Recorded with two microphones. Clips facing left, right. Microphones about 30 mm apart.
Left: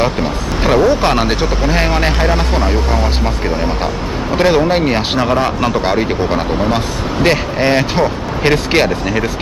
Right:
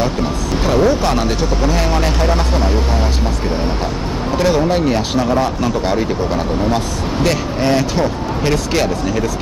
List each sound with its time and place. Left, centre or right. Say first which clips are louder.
0.0 s speech: left 2 dB; left
4.4 s speech: left 3 dB; left